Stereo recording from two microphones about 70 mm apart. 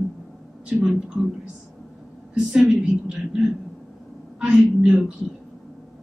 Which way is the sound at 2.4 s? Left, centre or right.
Centre.